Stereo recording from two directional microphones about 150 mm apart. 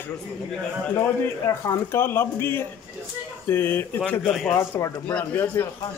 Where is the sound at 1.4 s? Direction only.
20° left (ahead or behind).